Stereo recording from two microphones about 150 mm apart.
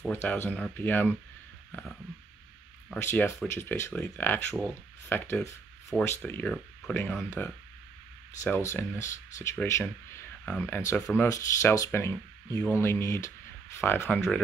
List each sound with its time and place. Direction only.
0.1 s speech: 15° left (ahead or behind)
1.7 s a sound: 10° left (ahead or behind)
2.9 s speech: 15° left (ahead or behind)